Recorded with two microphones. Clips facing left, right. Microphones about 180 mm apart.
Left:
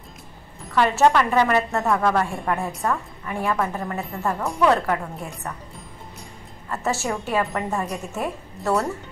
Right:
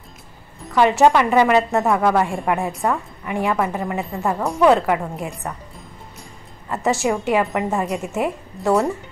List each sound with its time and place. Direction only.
0.7 s a woman's voice: 15° right (ahead or behind)
6.7 s a woman's voice: 15° right (ahead or behind)